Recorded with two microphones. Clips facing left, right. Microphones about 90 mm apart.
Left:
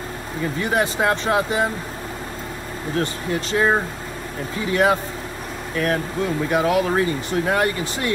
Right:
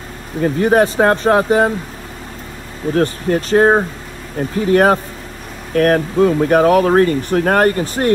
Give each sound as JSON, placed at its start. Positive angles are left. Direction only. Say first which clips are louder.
{"t": 0.4, "sound": "speech", "louder": "right 9 dB", "side_deg": -45}
{"t": 3.0, "sound": "speech", "louder": "right 8 dB", "side_deg": -45}